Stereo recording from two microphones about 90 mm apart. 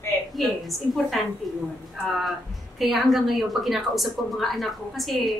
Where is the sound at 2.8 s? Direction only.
Centre (ahead or behind).